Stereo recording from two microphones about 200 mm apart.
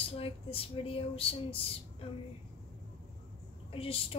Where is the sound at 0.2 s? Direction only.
25° left (ahead or behind).